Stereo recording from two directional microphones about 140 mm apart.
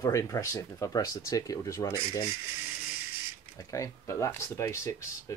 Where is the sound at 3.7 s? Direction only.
20° left (ahead or behind).